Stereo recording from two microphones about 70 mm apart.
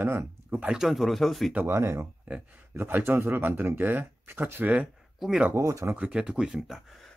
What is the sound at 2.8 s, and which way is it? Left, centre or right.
Speech, right.